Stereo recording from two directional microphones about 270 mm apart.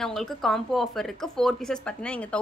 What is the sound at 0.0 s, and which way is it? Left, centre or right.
Speech, centre.